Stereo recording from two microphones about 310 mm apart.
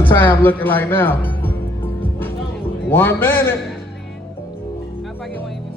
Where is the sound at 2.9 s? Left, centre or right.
Centre.